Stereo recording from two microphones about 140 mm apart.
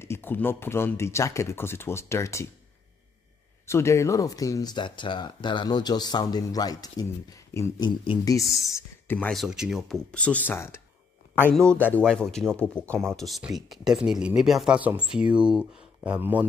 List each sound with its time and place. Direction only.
0.0 s speech: 15° left (ahead or behind)
3.6 s speech: 20° left (ahead or behind)
7.8 s speech: 35° left (ahead or behind)
8.3 s speech: 25° left (ahead or behind)
9.3 s speech: centre (ahead or behind); by 10.8 s 15° left (ahead or behind)
11.9 s speech: 5° left (ahead or behind); by 16.4 s 10° right (ahead or behind)